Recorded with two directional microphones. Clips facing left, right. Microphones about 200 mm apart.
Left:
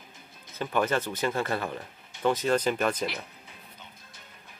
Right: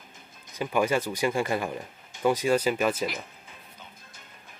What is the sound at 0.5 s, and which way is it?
Speech, 10° right (ahead or behind).